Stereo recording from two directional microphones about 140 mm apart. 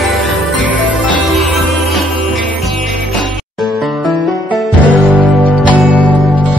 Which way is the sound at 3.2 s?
Centre (ahead or behind).